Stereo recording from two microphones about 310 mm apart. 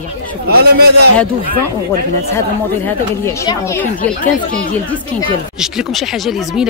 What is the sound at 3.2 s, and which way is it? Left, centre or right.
Speech, centre.